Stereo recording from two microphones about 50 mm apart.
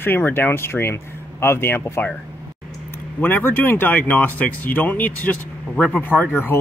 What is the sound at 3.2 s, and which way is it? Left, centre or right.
Speech, left.